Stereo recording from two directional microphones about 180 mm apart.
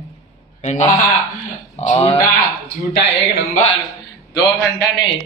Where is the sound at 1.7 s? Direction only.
35° left (ahead or behind).